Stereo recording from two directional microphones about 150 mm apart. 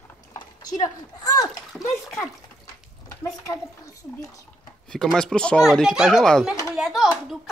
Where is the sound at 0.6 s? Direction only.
25° left (ahead or behind).